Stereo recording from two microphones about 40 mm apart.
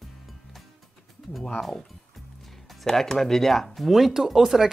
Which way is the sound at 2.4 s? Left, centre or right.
Centre.